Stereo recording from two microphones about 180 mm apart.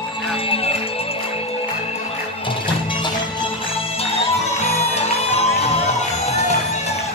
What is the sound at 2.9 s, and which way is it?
Music, 25° left (ahead or behind).